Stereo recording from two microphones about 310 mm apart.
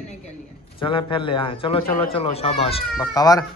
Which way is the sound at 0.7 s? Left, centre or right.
Centre.